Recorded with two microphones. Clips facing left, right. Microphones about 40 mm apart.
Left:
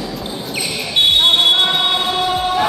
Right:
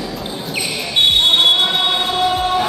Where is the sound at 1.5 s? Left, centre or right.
Centre.